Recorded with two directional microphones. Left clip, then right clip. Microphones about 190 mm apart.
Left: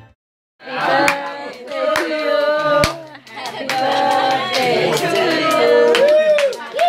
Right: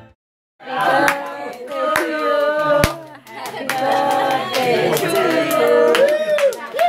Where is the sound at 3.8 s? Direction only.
5° right (ahead or behind).